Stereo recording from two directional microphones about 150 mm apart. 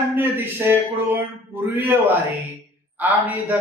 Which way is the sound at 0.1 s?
15° right (ahead or behind).